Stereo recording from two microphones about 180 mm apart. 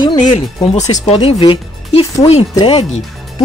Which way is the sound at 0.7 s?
40° left (ahead or behind).